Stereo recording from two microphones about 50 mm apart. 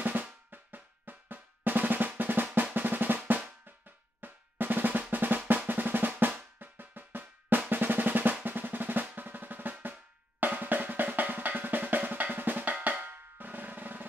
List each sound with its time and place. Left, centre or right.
0.0 s drum: right
5.1 s drum roll: right
5.7 s drum: right
7.7 s drum roll: right
10.4 s drum: right